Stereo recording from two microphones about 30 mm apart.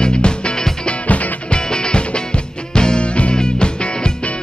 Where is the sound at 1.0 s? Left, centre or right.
Left.